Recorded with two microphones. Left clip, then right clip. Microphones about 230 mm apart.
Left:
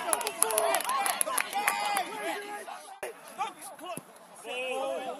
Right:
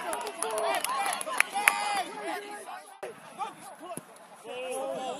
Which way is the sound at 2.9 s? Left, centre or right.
Left.